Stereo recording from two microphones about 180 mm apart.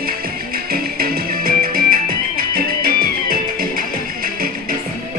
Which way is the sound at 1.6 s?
50° right (ahead or behind).